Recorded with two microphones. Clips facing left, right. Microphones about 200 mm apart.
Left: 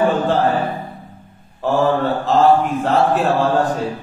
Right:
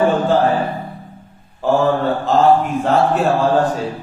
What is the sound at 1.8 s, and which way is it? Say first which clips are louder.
Mantra: left 2 dB; centre (ahead or behind).